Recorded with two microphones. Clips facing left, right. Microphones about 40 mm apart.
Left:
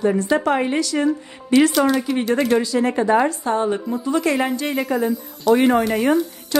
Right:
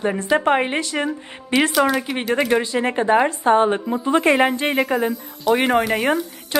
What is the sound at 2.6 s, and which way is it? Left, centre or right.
A woman's voice, right.